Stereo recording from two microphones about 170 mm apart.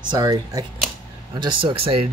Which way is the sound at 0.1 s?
20° right (ahead or behind).